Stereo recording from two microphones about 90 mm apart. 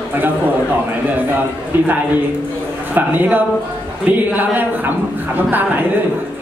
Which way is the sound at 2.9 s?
20° right (ahead or behind).